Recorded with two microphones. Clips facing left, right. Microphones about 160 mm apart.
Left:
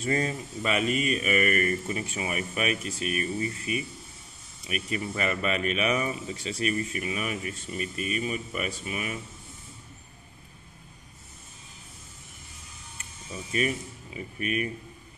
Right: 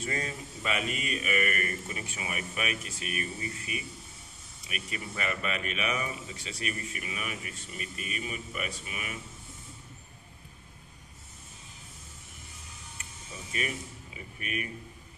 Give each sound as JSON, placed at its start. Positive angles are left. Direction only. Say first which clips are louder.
{"t": 0.0, "sound": "speech", "louder": "left 7 dB", "side_deg": 35}
{"t": 13.5, "sound": "speech", "louder": "left 7 dB", "side_deg": 35}